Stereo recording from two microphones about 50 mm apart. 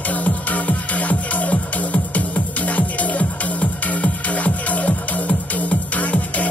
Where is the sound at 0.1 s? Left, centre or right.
Left.